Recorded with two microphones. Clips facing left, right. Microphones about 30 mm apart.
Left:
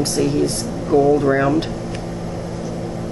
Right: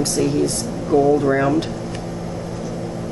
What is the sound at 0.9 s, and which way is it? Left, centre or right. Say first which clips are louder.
Speech: left 1 dB; centre.